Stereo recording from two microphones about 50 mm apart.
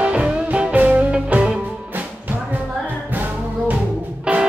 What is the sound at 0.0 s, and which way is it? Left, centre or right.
Music, right.